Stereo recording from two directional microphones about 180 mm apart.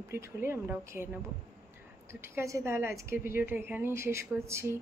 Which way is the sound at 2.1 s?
15° right (ahead or behind).